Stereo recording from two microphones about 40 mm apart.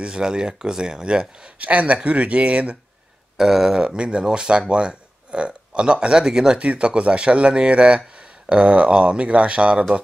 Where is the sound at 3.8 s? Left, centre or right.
Right.